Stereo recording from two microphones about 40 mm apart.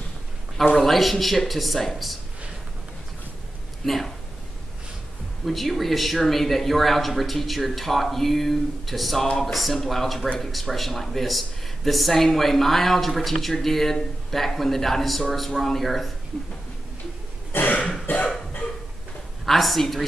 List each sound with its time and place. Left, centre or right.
0.7 s speech: centre
3.8 s speech: centre
5.4 s speech: centre
17.5 s cough: left
18.0 s cough: left
19.4 s speech: centre